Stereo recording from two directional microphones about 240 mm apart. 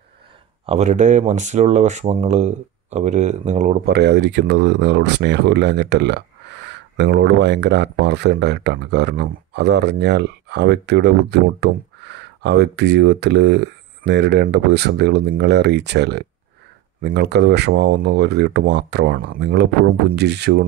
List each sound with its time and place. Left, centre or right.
0.7 s speech: right
3.9 s speech: right